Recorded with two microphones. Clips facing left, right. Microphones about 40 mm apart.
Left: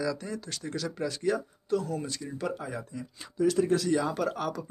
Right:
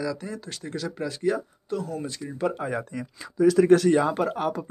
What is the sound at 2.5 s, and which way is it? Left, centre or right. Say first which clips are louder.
Speech: right 6 dB; right.